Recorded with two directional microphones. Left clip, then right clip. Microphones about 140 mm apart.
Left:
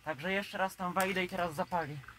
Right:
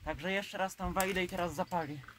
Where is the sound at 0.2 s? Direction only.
30° right (ahead or behind).